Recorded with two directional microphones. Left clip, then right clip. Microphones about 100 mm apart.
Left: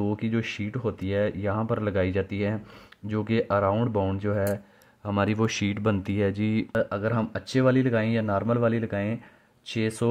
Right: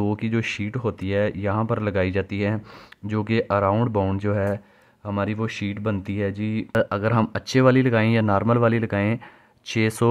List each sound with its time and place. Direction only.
0.0 s speech: 40° right (ahead or behind)
5.0 s speech: 5° right (ahead or behind)
6.8 s speech: 50° right (ahead or behind)